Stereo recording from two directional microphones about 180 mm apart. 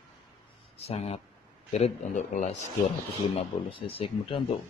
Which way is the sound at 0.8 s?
35° left (ahead or behind).